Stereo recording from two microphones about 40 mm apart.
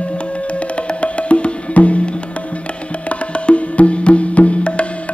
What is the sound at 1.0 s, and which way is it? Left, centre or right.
Music, left.